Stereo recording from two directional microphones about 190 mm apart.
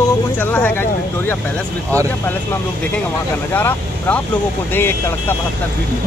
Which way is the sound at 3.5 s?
10° left (ahead or behind).